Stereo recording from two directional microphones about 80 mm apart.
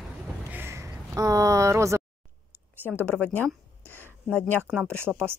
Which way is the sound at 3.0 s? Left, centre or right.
Centre.